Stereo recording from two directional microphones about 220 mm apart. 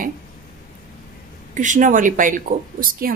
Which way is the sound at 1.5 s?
35° right (ahead or behind).